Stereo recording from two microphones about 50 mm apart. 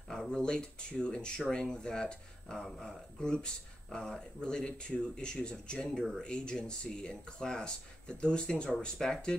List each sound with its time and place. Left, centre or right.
0.3 s speech: centre